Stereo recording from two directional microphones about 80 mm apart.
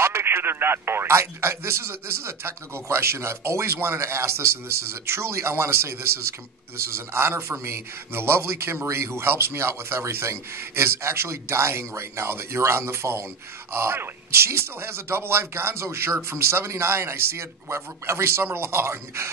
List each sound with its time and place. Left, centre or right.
0.0 s a man's voice: right